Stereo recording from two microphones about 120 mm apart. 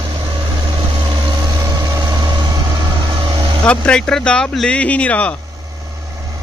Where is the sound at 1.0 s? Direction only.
45° right (ahead or behind).